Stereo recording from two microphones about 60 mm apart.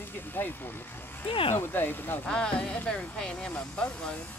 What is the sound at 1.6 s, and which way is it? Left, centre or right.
Speech, left.